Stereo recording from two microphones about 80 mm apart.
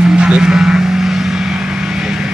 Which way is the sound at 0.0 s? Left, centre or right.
Centre.